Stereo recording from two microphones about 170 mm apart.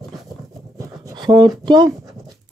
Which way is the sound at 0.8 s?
20° right (ahead or behind).